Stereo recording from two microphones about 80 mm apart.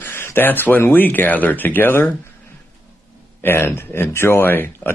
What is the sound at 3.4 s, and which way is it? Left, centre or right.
Speech, left.